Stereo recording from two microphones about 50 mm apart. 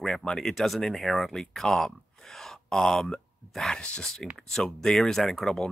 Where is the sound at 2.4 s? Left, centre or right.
Centre.